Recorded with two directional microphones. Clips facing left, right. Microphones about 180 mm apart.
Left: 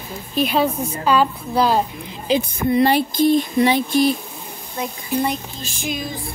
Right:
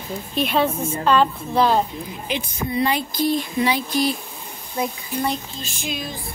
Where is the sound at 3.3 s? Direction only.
45° left (ahead or behind).